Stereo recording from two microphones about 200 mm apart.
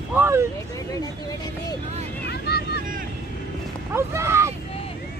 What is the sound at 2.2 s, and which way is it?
Vehicle, 55° left (ahead or behind).